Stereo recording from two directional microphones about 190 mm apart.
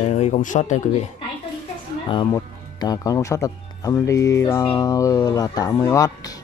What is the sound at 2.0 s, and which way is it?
Speech, 25° left (ahead or behind).